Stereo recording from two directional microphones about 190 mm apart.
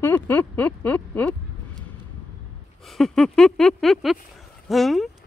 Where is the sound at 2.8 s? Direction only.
Centre (ahead or behind).